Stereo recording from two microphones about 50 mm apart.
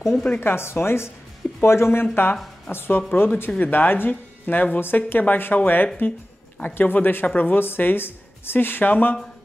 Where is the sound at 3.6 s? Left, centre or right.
Left.